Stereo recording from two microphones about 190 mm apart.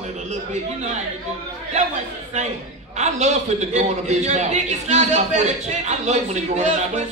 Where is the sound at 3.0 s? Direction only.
35° right (ahead or behind).